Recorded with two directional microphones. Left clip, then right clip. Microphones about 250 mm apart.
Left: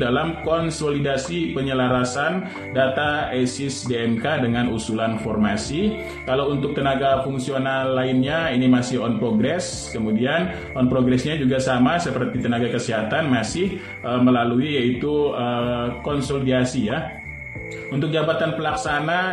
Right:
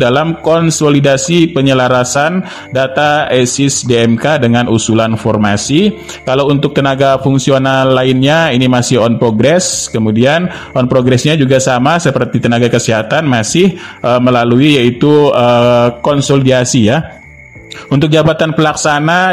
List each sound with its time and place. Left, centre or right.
0.0 s speech: right
11.1 s speech: right